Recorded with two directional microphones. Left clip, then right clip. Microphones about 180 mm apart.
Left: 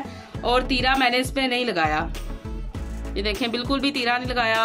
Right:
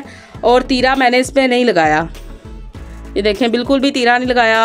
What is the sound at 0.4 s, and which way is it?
Speech, 35° right (ahead or behind).